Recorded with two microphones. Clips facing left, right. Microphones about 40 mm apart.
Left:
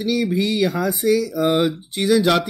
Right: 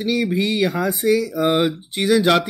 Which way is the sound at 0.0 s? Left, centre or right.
Right.